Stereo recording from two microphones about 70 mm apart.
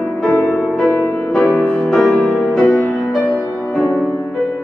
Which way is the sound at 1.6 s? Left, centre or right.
Centre.